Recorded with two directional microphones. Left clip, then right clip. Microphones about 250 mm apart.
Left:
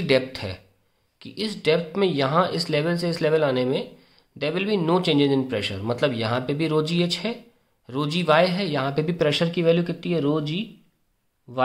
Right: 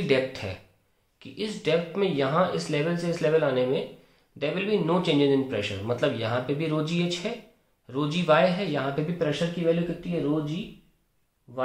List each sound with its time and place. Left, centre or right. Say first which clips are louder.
0.0 s speech: left 3 dB; left